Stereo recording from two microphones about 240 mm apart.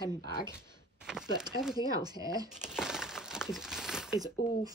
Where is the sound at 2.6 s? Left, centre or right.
Centre.